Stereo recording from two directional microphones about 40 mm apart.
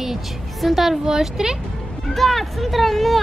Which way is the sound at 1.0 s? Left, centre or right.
Centre.